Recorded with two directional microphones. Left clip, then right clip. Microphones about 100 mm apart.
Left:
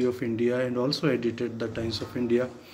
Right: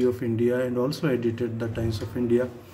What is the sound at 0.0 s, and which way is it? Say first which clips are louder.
A man's voice: right 2 dB; 35° right (ahead or behind).